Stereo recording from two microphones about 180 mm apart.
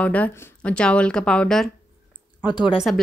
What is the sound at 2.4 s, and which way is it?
Speech, 25° left (ahead or behind).